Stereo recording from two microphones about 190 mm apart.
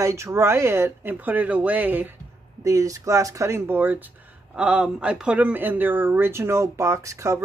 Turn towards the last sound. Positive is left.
turn(degrees=-15)  # may be behind; listen again after turning